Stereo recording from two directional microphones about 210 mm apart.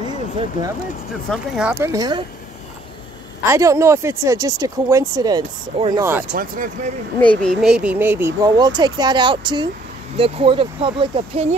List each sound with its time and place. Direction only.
0.4 s speech: 20° right (ahead or behind)
1.3 s speech: 5° right (ahead or behind)
3.4 s speech: 15° right (ahead or behind)
6.3 s speech: 40° right (ahead or behind)
7.2 s speech: 5° left (ahead or behind); by 11.4 s 25° right (ahead or behind)